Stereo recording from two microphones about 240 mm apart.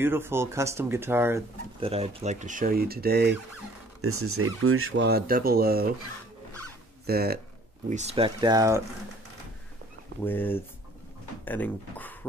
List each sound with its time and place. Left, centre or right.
0.0 s speech: centre
1.8 s speech: right
4.0 s speech: right
7.1 s speech: right
7.9 s speech: right
10.2 s speech: centre